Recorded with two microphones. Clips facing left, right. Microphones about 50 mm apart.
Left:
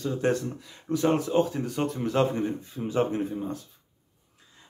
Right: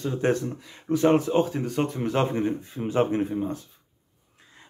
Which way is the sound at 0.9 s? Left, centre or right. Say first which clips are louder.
Right 4 dB; right.